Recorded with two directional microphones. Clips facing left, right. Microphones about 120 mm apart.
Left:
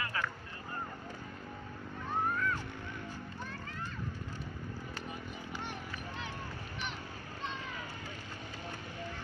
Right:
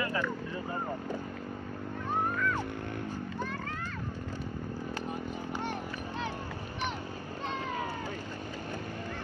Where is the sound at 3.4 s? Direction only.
70° right (ahead or behind).